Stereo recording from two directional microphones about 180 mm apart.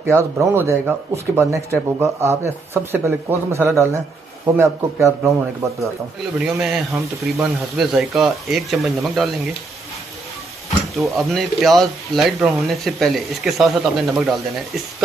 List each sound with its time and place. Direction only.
0.0 s speech: 15° right (ahead or behind)
6.4 s speech: 5° right (ahead or behind)
11.0 s speech: centre (ahead or behind)